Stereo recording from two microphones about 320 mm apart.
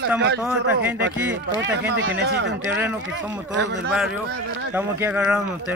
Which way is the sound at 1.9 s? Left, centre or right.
Right.